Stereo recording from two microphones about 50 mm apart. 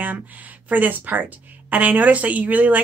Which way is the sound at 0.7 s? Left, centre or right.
Right.